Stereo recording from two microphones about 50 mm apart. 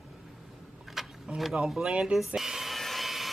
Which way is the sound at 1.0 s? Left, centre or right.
Centre.